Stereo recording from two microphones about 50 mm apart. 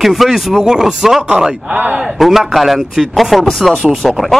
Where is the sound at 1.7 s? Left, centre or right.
Right.